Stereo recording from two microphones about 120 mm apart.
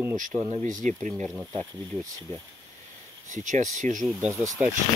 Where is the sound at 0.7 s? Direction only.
90° right.